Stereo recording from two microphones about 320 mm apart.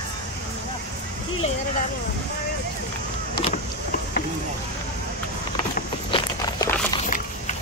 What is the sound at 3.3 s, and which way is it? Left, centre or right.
Vehicle, left.